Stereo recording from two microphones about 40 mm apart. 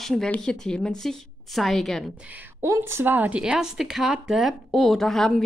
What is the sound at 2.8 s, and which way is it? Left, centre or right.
Speech, right.